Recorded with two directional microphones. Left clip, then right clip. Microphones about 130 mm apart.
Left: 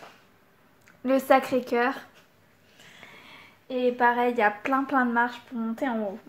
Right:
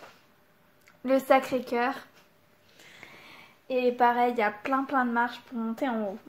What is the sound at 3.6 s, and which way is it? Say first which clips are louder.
Speech: even; 55° right (ahead or behind).